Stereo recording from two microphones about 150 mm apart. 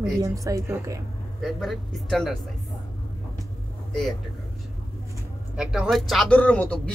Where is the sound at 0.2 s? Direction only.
20° right (ahead or behind).